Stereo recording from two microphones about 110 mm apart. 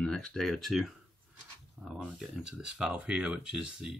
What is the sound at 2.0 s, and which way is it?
Speech, 5° right (ahead or behind).